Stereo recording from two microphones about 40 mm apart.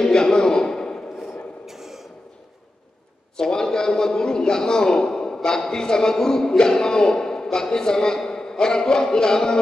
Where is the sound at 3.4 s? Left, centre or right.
Centre.